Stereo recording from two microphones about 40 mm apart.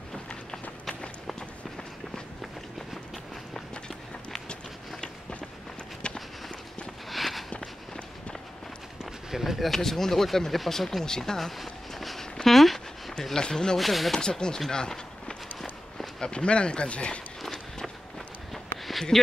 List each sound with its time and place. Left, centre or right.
0.1 s run: centre
6.0 s walk: left
7.1 s a sound: centre
9.3 s speech: centre
11.3 s train: centre
12.4 s a sound: centre
13.4 s speech: centre
13.7 s speech: centre
14.1 s speech: centre
17.5 s walk: centre
18.5 s a sound: centre